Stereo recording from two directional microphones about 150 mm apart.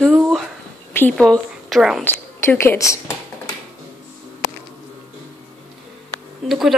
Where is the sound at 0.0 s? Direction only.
Centre (ahead or behind).